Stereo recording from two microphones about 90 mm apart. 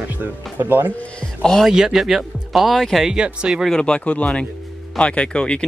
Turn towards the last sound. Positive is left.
turn(degrees=10)  # may be behind; listen again after turning